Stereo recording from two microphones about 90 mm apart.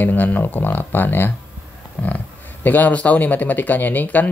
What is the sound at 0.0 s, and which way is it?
Speech, 20° left (ahead or behind).